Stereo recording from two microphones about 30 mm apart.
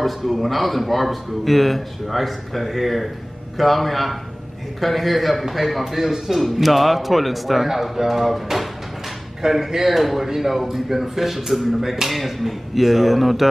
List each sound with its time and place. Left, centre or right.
0.0 s a man's voice: centre
9.4 s speech: centre
9.8 s a man's voice: centre